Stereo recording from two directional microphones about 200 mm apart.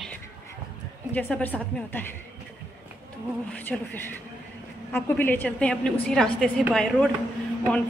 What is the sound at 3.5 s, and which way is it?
A woman's voice, 10° left (ahead or behind).